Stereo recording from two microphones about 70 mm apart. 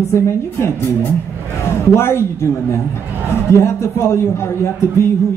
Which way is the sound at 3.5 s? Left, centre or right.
Left.